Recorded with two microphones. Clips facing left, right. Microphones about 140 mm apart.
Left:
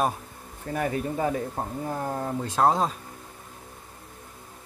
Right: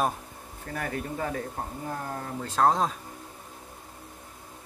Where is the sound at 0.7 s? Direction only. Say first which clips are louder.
Left 5 dB; 15° left (ahead or behind).